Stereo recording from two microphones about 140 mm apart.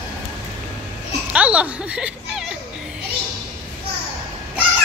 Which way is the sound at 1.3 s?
10° right (ahead or behind).